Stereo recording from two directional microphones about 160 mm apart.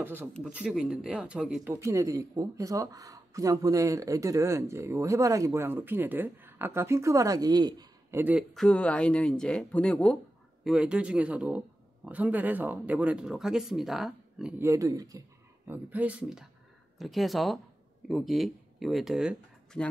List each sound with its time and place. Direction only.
0.0 s speech: 15° right (ahead or behind)
1.8 s speech: 20° right (ahead or behind)
8.2 s speech: 10° right (ahead or behind)
8.5 s speech: 5° left (ahead or behind)
10.6 s speech: 5° right (ahead or behind)
14.6 s speech: 20° right (ahead or behind); by 19.8 s 5° right (ahead or behind)